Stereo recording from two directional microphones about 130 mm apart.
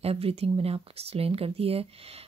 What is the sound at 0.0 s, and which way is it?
Speech, 50° right (ahead or behind).